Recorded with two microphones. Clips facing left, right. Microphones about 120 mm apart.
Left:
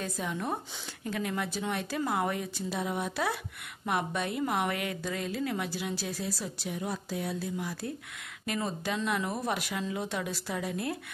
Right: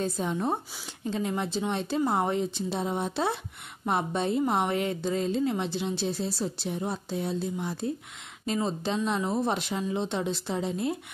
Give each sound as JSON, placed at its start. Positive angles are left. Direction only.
{"t": 0.0, "sound": "a woman's voice", "side_deg": -30}